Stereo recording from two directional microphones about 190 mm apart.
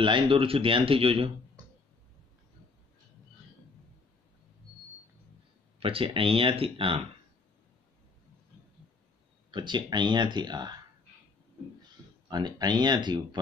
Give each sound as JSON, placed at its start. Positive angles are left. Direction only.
{"t": 0.0, "sound": "speech", "side_deg": -25}
{"t": 5.8, "sound": "speech", "side_deg": -30}
{"t": 9.5, "sound": "speech", "side_deg": -25}
{"t": 12.3, "sound": "speech", "side_deg": -20}